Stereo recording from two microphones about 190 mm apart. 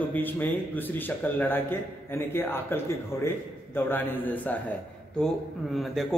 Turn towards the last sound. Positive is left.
turn(degrees=0)  # may be behind; listen again after turning